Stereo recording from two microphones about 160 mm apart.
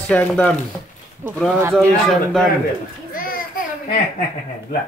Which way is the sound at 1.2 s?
15° right (ahead or behind).